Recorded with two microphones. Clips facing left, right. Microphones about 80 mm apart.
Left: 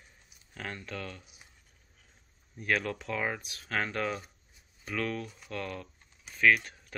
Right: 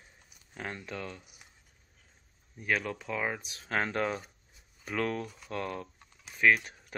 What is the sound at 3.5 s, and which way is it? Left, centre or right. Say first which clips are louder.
Speech: right 4 dB; right.